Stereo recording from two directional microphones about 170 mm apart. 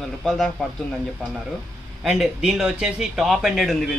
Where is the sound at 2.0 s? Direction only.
Centre (ahead or behind).